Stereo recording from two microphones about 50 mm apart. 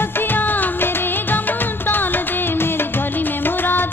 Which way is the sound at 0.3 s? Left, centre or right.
Left.